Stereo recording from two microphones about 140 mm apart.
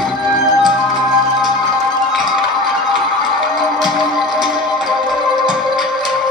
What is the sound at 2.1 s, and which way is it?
Music, centre (ahead or behind).